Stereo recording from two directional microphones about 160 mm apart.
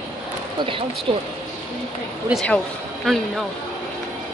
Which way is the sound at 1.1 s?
35° right (ahead or behind).